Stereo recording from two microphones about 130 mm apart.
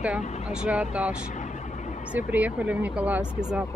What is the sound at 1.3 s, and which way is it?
Vehicle, 65° left (ahead or behind).